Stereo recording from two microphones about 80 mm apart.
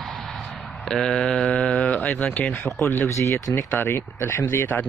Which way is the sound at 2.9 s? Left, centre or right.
Left.